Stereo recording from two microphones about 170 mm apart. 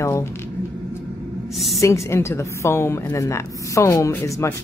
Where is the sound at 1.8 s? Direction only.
15° left (ahead or behind).